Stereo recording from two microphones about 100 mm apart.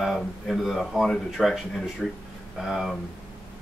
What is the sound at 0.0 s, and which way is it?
Speech, centre (ahead or behind).